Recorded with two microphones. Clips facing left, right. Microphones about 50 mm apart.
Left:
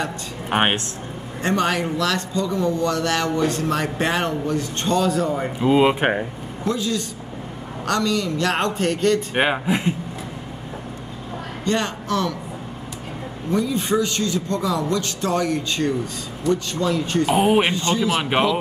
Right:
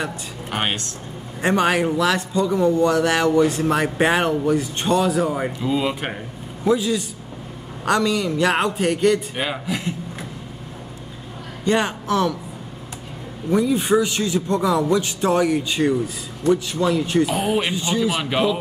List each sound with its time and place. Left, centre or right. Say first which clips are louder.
0.5 s a man's voice: left 5 dB; left
1.4 s a man's voice: right 3 dB; centre
5.6 s speech: left 10 dB; left
6.6 s a man's voice: right 4 dB; centre
9.3 s a man's voice: left 5 dB; left
11.6 s a man's voice: right 3 dB; centre
13.5 s a man's voice: right 3 dB; centre
17.4 s speech: left 4 dB; left
17.7 s a man's voice: left 1 dB; centre
18.2 s speech: left 1 dB; left